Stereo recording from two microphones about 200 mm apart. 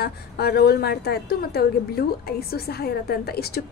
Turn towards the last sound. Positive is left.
turn(degrees=50)  # may be behind; listen again after turning